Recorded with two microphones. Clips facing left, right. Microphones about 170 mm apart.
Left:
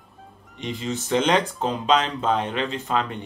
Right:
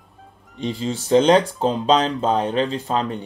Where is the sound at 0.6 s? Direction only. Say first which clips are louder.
Right 4 dB; 30° right (ahead or behind).